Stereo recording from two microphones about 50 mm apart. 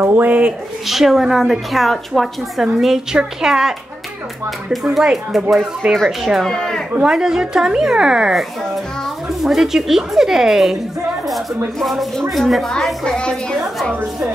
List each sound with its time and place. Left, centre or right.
0.0 s speech: right
0.8 s a woman's voice: centre
2.8 s speech: centre
5.1 s a woman's voice: centre
6.4 s a woman's voice: centre
7.0 s a woman's voice: centre
13.0 s a woman's voice: centre